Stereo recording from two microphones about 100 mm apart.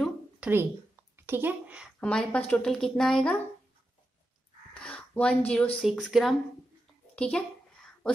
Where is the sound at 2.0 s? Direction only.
10° left (ahead or behind).